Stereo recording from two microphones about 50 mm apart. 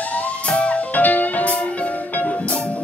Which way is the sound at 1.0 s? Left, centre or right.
Left.